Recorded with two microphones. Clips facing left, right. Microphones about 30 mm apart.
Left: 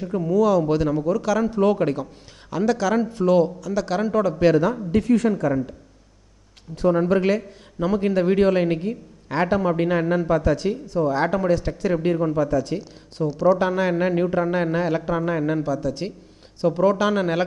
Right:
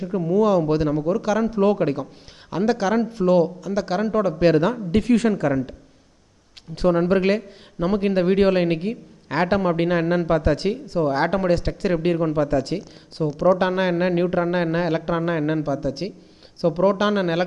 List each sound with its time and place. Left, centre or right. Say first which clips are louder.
0.0 s speech: even; centre
0.3 s speech: even; right
2.5 s speech: even; right; by 4.4 s centre
4.9 s a woman's voice: right 1 dB; right
6.9 s a man's voice: right 1 dB; right
8.8 s a woman's voice: right 1 dB; right
11.9 s speech: even; right
12.4 s speech: right 1 dB; right
13.2 s speech: even; centre
13.6 s a man's voice: even; right
15.5 s a man's voice: even; centre